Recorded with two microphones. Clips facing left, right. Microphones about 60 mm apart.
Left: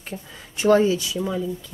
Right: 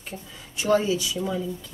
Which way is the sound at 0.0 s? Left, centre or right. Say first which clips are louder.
Left 3 dB; left.